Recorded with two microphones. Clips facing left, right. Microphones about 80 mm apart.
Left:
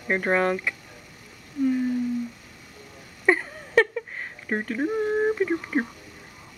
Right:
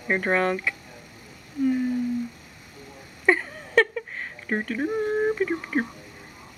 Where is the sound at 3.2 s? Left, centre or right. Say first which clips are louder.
Even; centre.